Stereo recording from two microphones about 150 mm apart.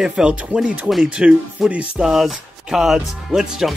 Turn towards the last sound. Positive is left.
turn(degrees=0)  # may be behind; listen again after turning